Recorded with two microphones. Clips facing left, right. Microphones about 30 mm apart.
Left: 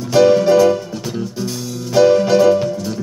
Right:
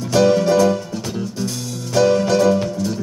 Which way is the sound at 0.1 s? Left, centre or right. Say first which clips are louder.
Left 4 dB; centre.